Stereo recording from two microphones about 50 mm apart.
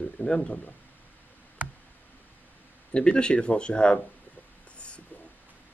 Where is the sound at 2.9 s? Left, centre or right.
Centre.